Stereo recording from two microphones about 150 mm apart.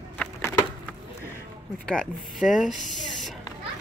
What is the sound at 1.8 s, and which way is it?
Speech, 5° left (ahead or behind).